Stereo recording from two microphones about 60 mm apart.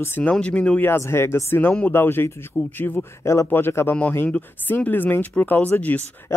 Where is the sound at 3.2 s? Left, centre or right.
Left.